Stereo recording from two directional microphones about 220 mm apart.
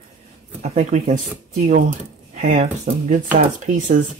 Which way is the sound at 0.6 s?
30° right (ahead or behind).